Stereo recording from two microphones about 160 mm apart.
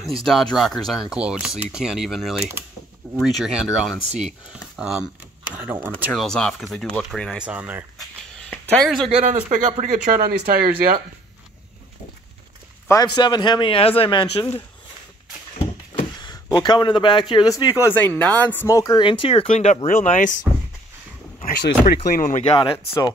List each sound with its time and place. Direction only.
0.2 s speech: centre (ahead or behind)
6.1 s speech: 5° left (ahead or behind)
8.5 s speech: 5° left (ahead or behind)
9.2 s speech: 50° right (ahead or behind)
12.8 s speech: 25° left (ahead or behind)
15.9 s speech: 30° left (ahead or behind)
17.9 s speech: 10° left (ahead or behind)
18.9 s speech: 30° left (ahead or behind); by 20.3 s 55° left (ahead or behind)
21.5 s speech: 75° left (ahead or behind); by 22.4 s 60° left (ahead or behind)